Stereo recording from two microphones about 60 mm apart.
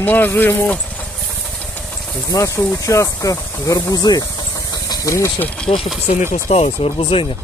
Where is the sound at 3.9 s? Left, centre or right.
Left.